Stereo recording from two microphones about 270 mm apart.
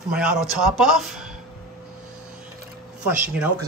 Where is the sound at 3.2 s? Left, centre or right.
Centre.